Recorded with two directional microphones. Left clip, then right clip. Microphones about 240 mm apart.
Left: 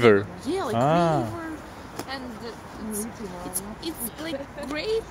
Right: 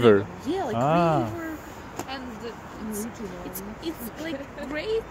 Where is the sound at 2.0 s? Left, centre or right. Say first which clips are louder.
Left 1 dB; centre.